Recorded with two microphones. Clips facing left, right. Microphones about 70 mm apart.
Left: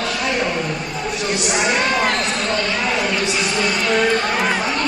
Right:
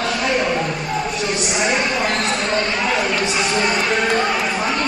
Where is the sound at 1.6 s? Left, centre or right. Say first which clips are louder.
Left 1 dB; left.